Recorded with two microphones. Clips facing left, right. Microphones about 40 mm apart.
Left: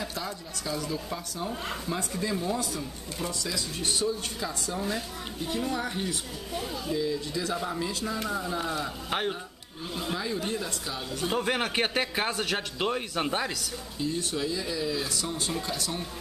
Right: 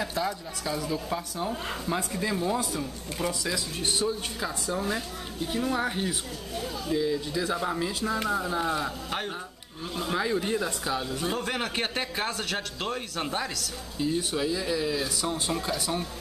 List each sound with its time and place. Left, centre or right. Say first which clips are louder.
0.2 s a man's voice: right 5 dB; centre
10.1 s a man's voice: right 6 dB; centre
11.3 s speech: left 3 dB; centre
13.9 s a man's voice: right 3 dB; centre